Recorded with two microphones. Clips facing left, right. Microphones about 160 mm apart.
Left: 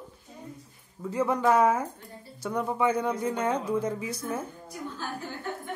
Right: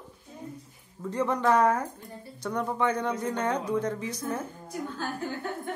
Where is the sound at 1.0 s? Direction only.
10° left (ahead or behind).